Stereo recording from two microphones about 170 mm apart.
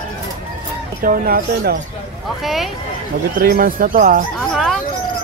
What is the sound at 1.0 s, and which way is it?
Speech, 60° right (ahead or behind).